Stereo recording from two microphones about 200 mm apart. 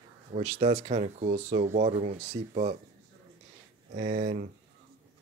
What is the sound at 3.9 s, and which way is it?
Speech, 40° right (ahead or behind).